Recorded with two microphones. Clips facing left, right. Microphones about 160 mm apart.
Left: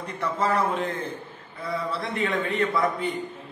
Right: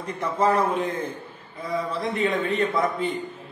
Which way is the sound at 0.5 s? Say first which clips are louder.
Right 3 dB; 20° right (ahead or behind).